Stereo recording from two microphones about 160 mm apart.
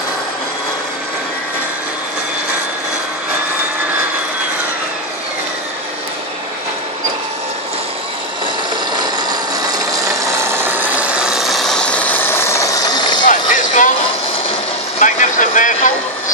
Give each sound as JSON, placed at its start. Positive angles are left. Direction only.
{"t": 10.4, "sound": "engine", "side_deg": -15}
{"t": 13.3, "sound": "vehicle", "side_deg": 55}
{"t": 15.0, "sound": "vehicle", "side_deg": 50}